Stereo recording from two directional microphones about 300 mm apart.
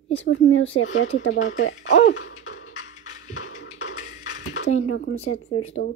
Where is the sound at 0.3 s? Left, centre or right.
Left.